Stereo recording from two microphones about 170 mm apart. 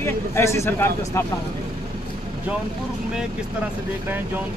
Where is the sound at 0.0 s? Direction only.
15° left (ahead or behind).